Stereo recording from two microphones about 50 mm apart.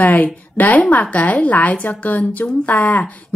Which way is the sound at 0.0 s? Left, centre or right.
Left.